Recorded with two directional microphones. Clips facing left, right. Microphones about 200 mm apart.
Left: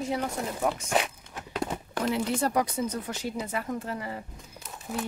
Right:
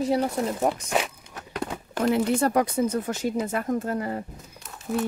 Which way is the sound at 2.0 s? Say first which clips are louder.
Right 6 dB; 55° right (ahead or behind).